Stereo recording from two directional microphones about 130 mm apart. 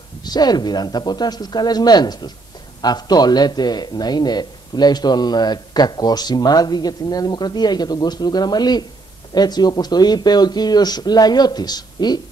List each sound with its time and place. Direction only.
0.2 s a man's voice: 30° left (ahead or behind)